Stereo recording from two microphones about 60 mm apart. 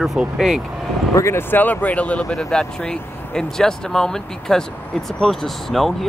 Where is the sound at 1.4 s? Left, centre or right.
Left.